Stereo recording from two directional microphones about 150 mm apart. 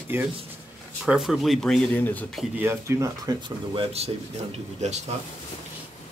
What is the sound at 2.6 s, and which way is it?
Speech, 15° right (ahead or behind).